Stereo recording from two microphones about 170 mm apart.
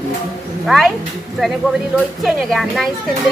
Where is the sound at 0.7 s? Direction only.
Centre (ahead or behind).